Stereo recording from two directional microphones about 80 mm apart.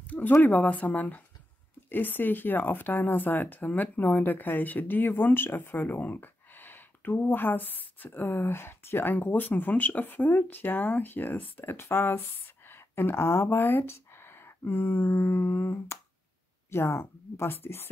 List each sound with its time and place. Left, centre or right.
0.0 s a woman's voice: left